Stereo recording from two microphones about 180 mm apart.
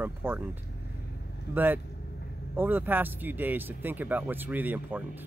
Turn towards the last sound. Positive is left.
turn(degrees=-10)  # may be behind; listen again after turning